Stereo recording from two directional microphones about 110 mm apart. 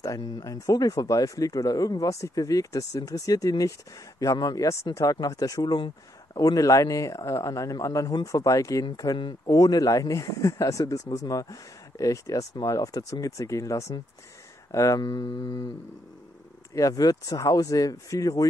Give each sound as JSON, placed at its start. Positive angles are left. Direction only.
{"t": 0.0, "sound": "speech", "side_deg": 30}
{"t": 15.0, "sound": "speech", "side_deg": 40}
{"t": 16.7, "sound": "speech", "side_deg": 30}